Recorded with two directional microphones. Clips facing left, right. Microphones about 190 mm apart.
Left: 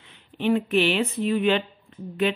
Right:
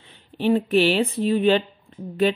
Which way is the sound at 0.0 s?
35° right (ahead or behind).